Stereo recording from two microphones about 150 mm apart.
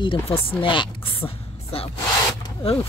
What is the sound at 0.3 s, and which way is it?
Speech, 35° left (ahead or behind).